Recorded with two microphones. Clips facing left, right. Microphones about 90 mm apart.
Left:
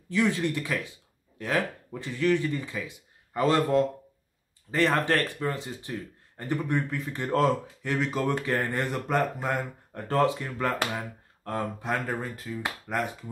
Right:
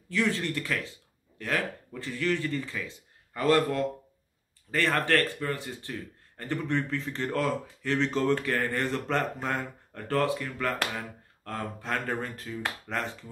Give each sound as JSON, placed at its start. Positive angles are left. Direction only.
{"t": 0.1, "sound": "speech", "side_deg": 15}
{"t": 8.0, "sound": "speech", "side_deg": 10}
{"t": 12.1, "sound": "speech", "side_deg": 5}